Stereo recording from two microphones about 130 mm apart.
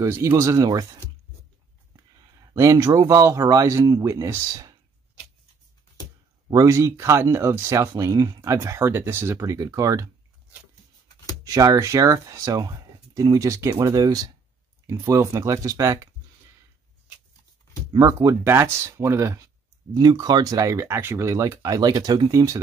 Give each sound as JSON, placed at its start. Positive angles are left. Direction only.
{"t": 0.0, "sound": "speech", "side_deg": -20}
{"t": 2.5, "sound": "speech", "side_deg": -25}
{"t": 6.5, "sound": "speech", "side_deg": -25}
{"t": 11.4, "sound": "speech", "side_deg": -25}
{"t": 17.9, "sound": "speech", "side_deg": -25}